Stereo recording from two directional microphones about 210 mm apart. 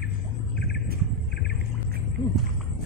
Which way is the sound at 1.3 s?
50° left (ahead or behind).